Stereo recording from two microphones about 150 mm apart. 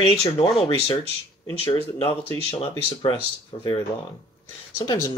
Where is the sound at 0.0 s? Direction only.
40° left (ahead or behind).